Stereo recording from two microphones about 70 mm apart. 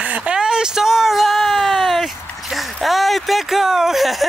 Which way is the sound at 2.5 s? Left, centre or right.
Centre.